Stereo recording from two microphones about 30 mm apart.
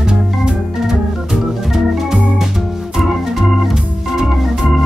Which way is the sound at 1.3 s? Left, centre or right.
Centre.